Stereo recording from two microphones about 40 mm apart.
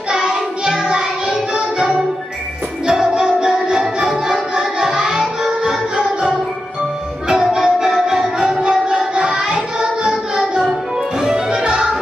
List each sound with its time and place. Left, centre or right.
0.7 s music: centre